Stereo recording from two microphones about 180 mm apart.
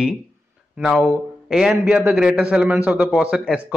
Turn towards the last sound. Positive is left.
turn(degrees=-5)  # may be behind; listen again after turning